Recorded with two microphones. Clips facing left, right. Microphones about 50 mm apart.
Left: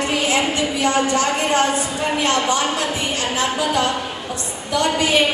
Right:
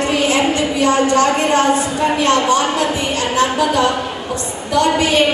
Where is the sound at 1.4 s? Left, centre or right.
Right.